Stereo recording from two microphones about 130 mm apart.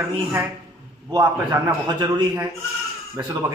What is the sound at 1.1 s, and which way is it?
A man's voice, 25° right (ahead or behind).